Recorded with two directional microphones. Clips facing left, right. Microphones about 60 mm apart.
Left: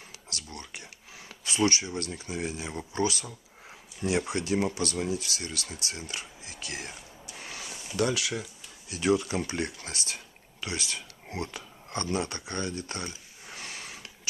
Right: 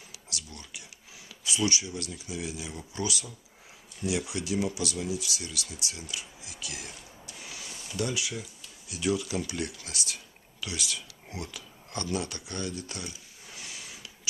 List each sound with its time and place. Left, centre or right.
0.3 s speech: left
7.3 s a sound: left
8.0 s speech: left
8.8 s speech: left